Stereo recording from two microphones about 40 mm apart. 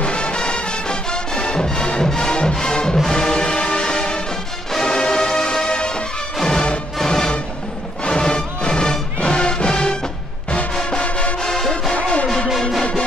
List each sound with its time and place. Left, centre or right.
0.0 s music: left
11.0 s music: left